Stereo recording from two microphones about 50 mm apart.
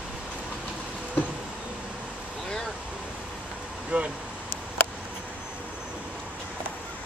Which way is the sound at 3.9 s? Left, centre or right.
Right.